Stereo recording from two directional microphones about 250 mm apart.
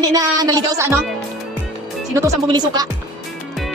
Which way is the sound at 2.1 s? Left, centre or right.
Centre.